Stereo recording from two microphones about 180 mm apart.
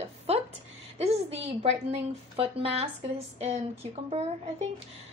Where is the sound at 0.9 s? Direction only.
35° right (ahead or behind).